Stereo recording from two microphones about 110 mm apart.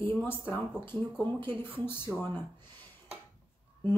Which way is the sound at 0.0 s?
20° left (ahead or behind).